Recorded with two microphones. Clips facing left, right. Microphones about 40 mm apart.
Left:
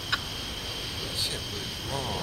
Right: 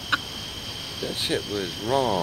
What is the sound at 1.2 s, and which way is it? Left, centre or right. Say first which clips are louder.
Speech: right 11 dB; right.